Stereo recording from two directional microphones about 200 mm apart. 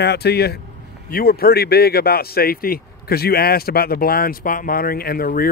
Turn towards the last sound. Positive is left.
turn(degrees=45)  # may be behind; listen again after turning